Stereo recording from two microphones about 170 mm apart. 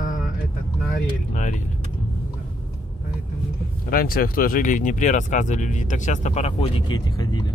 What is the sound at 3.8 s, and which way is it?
Speech, 60° left (ahead or behind).